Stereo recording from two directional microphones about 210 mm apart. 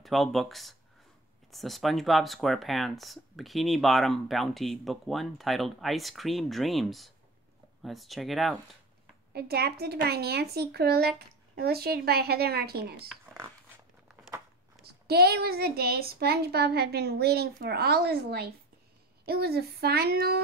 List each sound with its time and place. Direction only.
0.0 s speech: centre (ahead or behind)
9.3 s speech: 50° right (ahead or behind)
14.0 s a sound: 10° right (ahead or behind)
14.8 s speech: 50° right (ahead or behind)